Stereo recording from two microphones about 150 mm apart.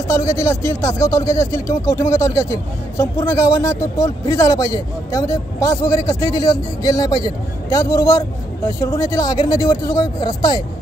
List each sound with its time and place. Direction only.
0.1 s speech: 20° left (ahead or behind)